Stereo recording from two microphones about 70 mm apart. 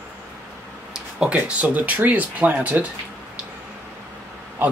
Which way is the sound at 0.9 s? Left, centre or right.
Centre.